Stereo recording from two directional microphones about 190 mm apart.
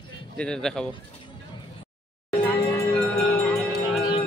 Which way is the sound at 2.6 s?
15° left (ahead or behind).